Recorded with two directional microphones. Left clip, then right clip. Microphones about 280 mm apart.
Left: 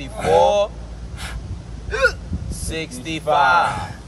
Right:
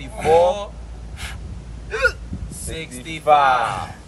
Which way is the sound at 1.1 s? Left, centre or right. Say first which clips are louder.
Even; centre.